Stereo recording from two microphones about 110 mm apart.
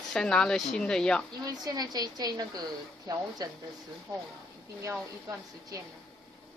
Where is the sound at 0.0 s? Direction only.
5° left (ahead or behind).